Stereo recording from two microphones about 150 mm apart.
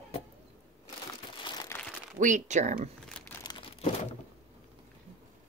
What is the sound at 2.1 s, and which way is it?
Speech, 55° right (ahead or behind).